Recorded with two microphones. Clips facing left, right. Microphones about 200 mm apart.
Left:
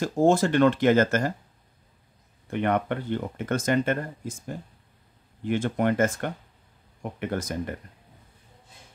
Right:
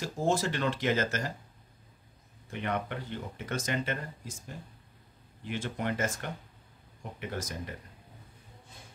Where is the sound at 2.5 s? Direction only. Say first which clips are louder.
Left 9 dB; 55° left (ahead or behind).